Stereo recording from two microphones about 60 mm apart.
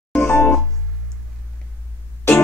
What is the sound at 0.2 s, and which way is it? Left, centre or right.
Music, left.